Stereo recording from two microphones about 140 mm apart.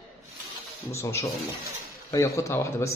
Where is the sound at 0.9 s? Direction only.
20° left (ahead or behind).